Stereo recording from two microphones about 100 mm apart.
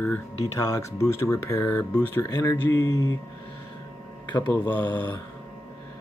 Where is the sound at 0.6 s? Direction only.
30° left (ahead or behind).